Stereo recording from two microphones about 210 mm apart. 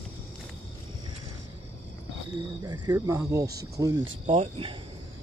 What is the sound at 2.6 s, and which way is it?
Speech, 20° right (ahead or behind).